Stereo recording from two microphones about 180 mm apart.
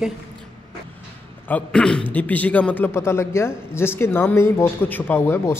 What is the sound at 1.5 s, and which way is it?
A man's voice, 5° left (ahead or behind).